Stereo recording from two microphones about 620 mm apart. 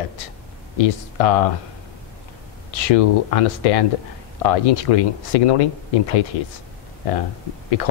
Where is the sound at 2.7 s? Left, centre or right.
Left.